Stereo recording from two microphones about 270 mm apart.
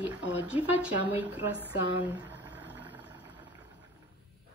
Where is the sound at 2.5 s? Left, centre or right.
Centre.